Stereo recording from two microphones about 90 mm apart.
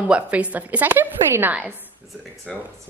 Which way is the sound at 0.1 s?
15° right (ahead or behind).